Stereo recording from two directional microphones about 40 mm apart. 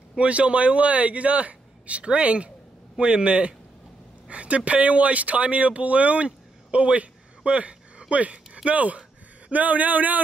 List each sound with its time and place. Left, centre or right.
0.2 s a man's voice: right